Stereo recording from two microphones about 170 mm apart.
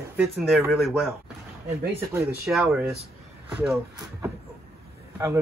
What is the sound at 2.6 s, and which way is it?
Speech, 5° right (ahead or behind).